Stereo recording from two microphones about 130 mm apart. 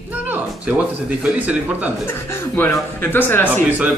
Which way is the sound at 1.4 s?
10° right (ahead or behind).